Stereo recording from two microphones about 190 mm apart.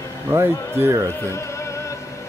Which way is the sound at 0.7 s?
15° right (ahead or behind).